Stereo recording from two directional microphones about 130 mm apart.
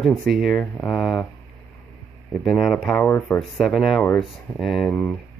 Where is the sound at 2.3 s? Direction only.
Centre (ahead or behind).